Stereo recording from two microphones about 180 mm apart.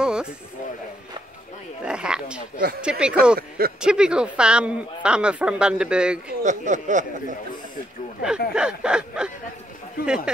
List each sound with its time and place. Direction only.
0.0 s a sound: 5° right (ahead or behind)
1.9 s a woman's voice: 5° right (ahead or behind)
3.3 s speech: 55° right (ahead or behind)
3.8 s a woman's voice: 5° right (ahead or behind)
6.4 s speech: 45° right (ahead or behind)
8.5 s a sound: 5° right (ahead or behind)
10.0 s a woman's voice: 5° right (ahead or behind)